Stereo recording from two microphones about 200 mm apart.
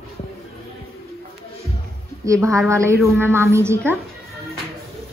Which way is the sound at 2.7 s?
15° right (ahead or behind).